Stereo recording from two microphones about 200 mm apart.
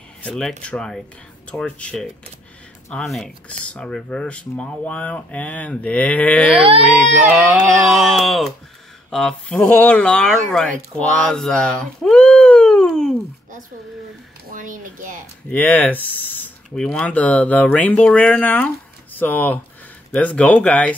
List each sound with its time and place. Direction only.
0.2 s speech: 5° left (ahead or behind)
6.5 s speech: 25° right (ahead or behind)
6.8 s speech: centre (ahead or behind)
11.0 s a sound: centre (ahead or behind)
14.5 s speech: 40° right (ahead or behind)
15.5 s speech: 10° left (ahead or behind)